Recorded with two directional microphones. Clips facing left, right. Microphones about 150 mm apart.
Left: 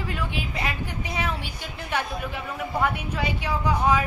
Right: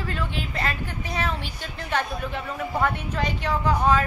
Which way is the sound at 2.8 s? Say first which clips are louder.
Right 1 dB; 10° left (ahead or behind).